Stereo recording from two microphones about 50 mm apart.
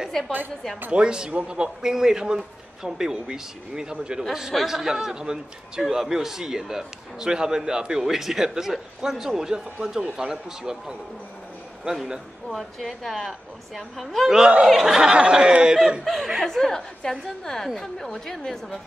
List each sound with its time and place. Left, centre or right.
0.2 s speech: centre
0.9 s a man's voice: centre
4.2 s a man's voice: centre
12.4 s speech: centre
15.0 s a man's voice: centre
16.0 s a woman's voice: centre